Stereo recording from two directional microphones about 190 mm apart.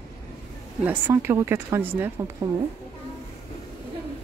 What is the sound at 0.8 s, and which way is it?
Speech, 10° right (ahead or behind).